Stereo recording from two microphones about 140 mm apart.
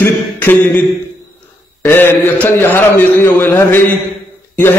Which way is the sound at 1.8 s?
15° left (ahead or behind).